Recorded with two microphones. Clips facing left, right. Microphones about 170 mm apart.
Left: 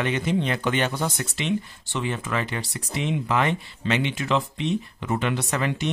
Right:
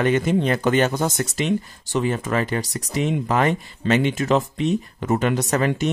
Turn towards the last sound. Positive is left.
turn(degrees=-45)  # may be behind; listen again after turning